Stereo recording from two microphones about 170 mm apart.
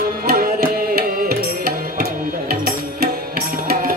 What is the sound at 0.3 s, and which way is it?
Tabla, 70° right (ahead or behind).